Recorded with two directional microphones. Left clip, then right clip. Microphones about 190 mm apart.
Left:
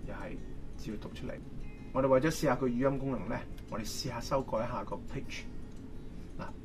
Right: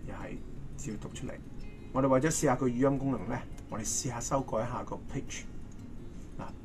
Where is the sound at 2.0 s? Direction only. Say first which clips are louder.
Even; 35° right (ahead or behind).